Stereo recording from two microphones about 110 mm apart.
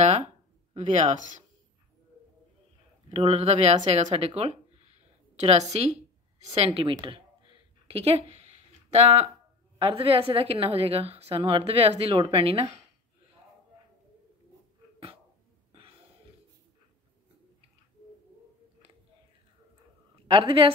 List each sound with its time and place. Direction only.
0.7 s speech: 90° right
3.1 s speech: 75° right (ahead or behind)
5.4 s a woman's voice: 80° right
6.5 s a woman's voice: 60° right (ahead or behind)
7.0 s a sound: 50° right (ahead or behind); by 8.5 s 70° right (ahead or behind)
8.9 s a woman's voice: 65° right (ahead or behind)
9.8 s a woman's voice: 55° right (ahead or behind)
12.2 s a woman's voice: 55° right (ahead or behind)
20.2 s a woman's voice: 50° right (ahead or behind)